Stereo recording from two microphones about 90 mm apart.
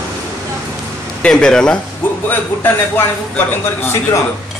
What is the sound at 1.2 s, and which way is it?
Speech, 10° left (ahead or behind).